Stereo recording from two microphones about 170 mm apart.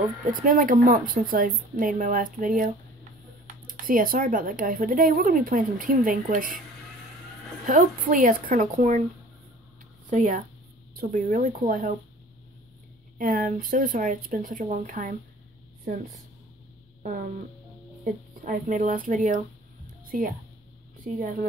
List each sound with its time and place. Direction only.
0.3 s speech: 50° right (ahead or behind)
7.6 s speech: 50° right (ahead or behind)
10.0 s speech: 50° right (ahead or behind)
13.2 s speech: 55° right (ahead or behind)
17.0 s music: 50° right (ahead or behind)
18.4 s speech: 50° right (ahead or behind)